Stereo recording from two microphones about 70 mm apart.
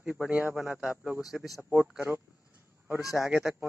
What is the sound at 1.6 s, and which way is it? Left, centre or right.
Speech, right.